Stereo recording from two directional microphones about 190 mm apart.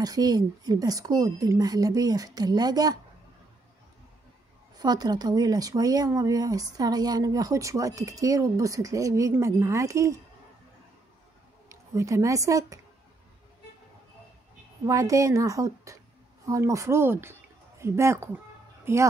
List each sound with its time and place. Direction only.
0.0 s speech: 20° right (ahead or behind)
4.7 s speech: 20° right (ahead or behind)
11.7 s speech: 15° right (ahead or behind)
14.9 s a woman's voice: 15° right (ahead or behind)